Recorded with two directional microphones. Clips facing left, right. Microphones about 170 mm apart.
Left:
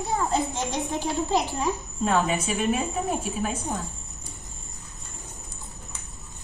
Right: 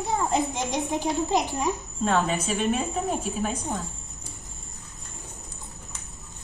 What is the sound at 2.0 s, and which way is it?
A woman's voice, 10° left (ahead or behind).